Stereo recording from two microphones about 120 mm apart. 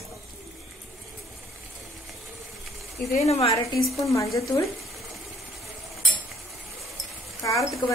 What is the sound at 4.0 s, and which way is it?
Speech, 25° left (ahead or behind).